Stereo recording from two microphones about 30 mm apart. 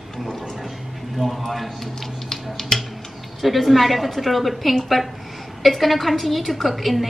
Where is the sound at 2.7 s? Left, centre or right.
Centre.